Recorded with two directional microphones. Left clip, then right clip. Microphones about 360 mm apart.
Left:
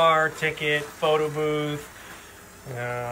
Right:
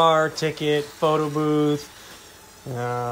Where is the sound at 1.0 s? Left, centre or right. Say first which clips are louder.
Right 1 dB; centre.